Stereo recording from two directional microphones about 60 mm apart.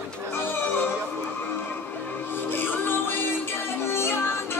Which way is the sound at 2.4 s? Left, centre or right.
Left.